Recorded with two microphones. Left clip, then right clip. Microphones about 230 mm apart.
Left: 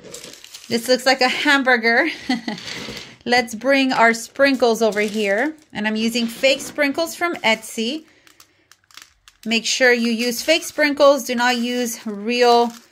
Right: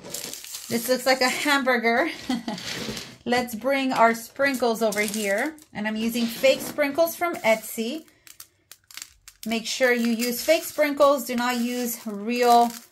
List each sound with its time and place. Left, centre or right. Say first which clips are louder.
0.7 s a woman's voice: left 5 dB; left
6.4 s a woman's voice: left 3 dB; left
9.5 s a woman's voice: left 7 dB; left